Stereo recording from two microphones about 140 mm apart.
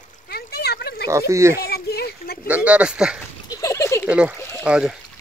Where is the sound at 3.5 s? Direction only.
25° left (ahead or behind).